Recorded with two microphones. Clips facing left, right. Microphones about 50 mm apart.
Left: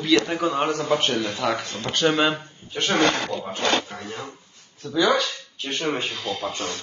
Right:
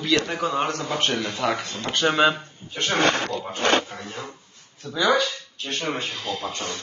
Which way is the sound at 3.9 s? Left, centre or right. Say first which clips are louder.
Left 1 dB; centre.